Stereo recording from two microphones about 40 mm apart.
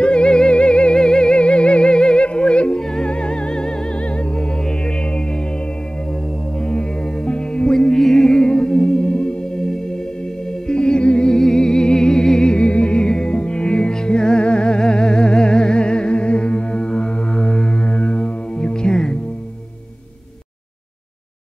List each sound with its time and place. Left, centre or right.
0.0 s music: left
6.6 s music: centre